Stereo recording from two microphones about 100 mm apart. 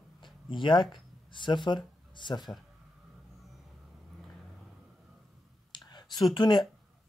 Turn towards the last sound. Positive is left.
turn(degrees=50)  # may be behind; listen again after turning